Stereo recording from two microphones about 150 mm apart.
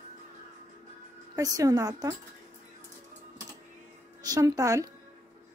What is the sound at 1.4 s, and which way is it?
Speech, 25° right (ahead or behind).